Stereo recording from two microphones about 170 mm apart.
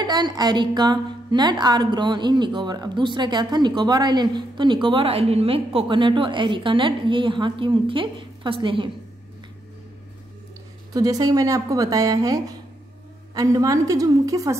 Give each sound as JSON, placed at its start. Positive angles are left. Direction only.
{"t": 0.0, "sound": "a woman's voice", "side_deg": -25}
{"t": 10.9, "sound": "a woman's voice", "side_deg": -20}